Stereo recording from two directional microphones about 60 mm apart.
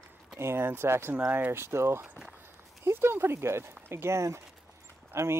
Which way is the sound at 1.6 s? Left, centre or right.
Right.